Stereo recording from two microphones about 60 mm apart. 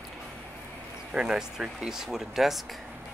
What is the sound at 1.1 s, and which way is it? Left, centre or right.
Speech, centre.